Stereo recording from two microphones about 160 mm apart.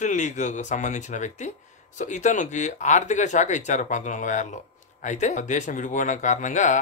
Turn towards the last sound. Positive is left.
turn(degrees=50)  # may be behind; listen again after turning